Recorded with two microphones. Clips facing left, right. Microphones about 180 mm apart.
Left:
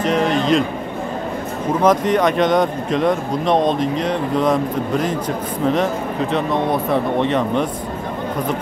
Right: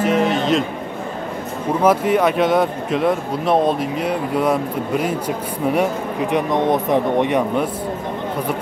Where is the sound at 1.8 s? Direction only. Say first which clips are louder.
Even; 10° right (ahead or behind).